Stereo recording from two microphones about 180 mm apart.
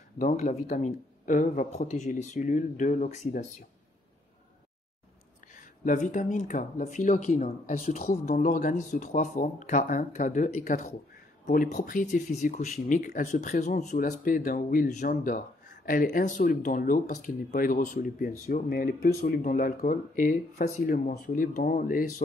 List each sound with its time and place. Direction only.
0.2 s speech: 45° left (ahead or behind)
5.6 s speech: 45° left (ahead or behind)